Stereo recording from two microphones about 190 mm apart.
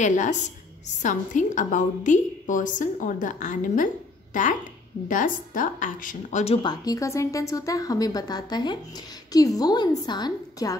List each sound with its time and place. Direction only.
0.0 s a woman's voice: 40° left (ahead or behind); by 10.8 s 20° left (ahead or behind)